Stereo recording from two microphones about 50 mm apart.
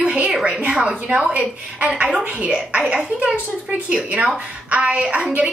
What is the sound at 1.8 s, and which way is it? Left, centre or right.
A woman's voice, right.